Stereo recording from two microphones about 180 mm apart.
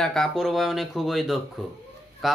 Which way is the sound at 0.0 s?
5° left (ahead or behind).